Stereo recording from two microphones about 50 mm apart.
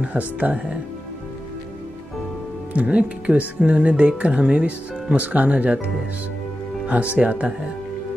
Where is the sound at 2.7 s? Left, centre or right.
Right.